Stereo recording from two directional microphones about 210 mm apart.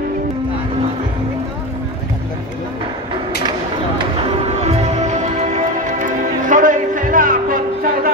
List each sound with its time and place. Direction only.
4.6 s music: 35° right (ahead or behind)